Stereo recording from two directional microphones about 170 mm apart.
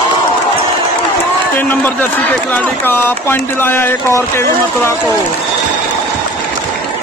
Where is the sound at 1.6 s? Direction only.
10° left (ahead or behind).